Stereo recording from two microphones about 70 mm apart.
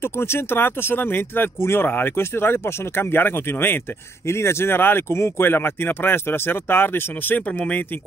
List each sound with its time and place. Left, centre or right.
0.0 s speech: left